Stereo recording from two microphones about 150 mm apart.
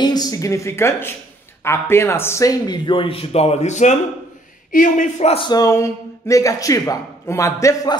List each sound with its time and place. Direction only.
0.0 s a man's voice: 25° left (ahead or behind); by 5.5 s 45° left (ahead or behind)
5.5 s speech: 25° left (ahead or behind)